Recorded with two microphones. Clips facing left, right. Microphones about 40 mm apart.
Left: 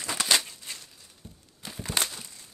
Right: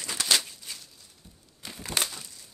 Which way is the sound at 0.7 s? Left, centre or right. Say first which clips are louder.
Left 1 dB; left.